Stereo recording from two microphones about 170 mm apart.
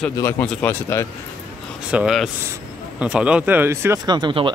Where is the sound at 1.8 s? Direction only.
5° right (ahead or behind); by 4.5 s 30° right (ahead or behind).